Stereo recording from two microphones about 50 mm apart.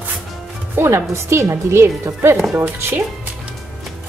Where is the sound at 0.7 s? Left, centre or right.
Right.